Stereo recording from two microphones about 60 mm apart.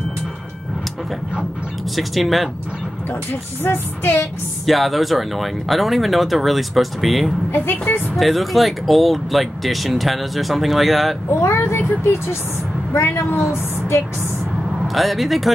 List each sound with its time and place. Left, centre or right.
2.0 s speech: centre
3.3 s a woman's voice: left
4.6 s speech: centre
7.5 s a woman's voice: left
8.2 s speech: centre
11.4 s a woman's voice: left
15.0 s speech: centre